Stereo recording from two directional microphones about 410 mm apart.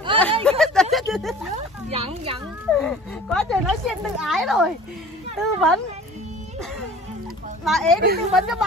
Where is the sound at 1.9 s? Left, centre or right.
Centre.